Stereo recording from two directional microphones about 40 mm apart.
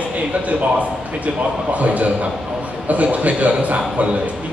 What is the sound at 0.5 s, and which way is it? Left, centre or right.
A man's voice, right.